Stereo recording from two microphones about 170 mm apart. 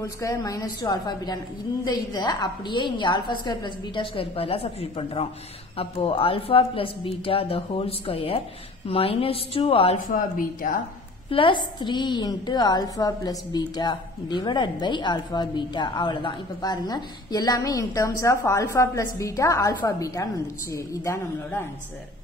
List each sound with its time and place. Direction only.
0.0 s a woman's voice: 20° left (ahead or behind)
10.0 s a woman's voice: 55° left (ahead or behind)
11.2 s a woman's voice: 30° left (ahead or behind); by 21.6 s 15° left (ahead or behind)